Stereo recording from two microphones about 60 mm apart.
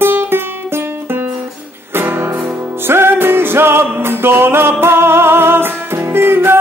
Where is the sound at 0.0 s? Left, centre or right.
Right.